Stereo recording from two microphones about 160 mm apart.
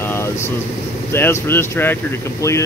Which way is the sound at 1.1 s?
15° left (ahead or behind).